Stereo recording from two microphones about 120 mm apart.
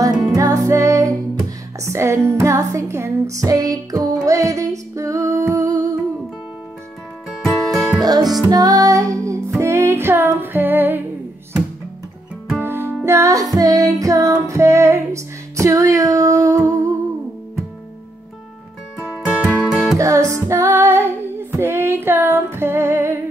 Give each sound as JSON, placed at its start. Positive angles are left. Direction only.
{"t": 0.4, "sound": "music", "side_deg": -25}
{"t": 7.2, "sound": "music", "side_deg": 0}
{"t": 8.0, "sound": "music", "side_deg": -35}
{"t": 12.5, "sound": "music", "side_deg": -20}
{"t": 19.1, "sound": "music", "side_deg": -15}
{"t": 20.0, "sound": "music", "side_deg": -25}
{"t": 20.3, "sound": "female singing", "side_deg": -25}